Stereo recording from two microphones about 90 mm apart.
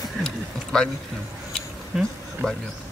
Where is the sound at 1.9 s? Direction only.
5° right (ahead or behind).